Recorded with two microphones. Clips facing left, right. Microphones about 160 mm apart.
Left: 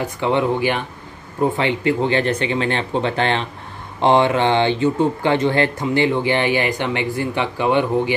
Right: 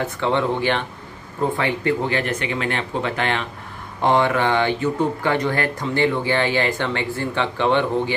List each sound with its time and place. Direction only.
0.0 s speech: 15° left (ahead or behind)